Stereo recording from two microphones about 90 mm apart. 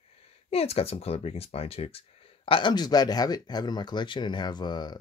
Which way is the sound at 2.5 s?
60° left (ahead or behind).